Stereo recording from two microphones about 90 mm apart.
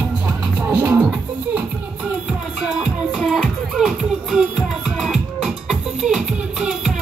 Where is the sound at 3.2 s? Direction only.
Centre (ahead or behind).